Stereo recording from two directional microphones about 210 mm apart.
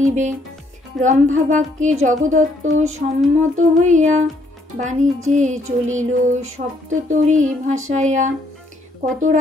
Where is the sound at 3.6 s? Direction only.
35° right (ahead or behind).